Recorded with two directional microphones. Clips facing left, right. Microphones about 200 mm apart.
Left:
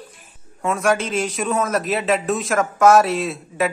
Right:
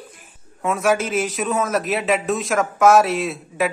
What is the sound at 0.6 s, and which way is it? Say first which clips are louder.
A man's voice: even; centre (ahead or behind).